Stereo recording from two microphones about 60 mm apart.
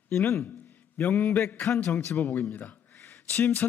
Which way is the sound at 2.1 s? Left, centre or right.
Left.